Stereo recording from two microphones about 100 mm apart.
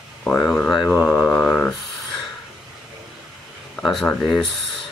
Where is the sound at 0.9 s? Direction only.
25° left (ahead or behind).